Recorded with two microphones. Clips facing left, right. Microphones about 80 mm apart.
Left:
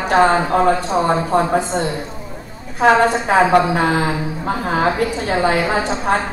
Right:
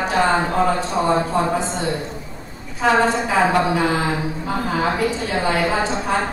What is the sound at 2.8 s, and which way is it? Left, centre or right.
A woman's voice, left.